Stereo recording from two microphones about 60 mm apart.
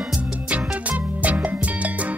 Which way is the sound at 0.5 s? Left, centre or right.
Right.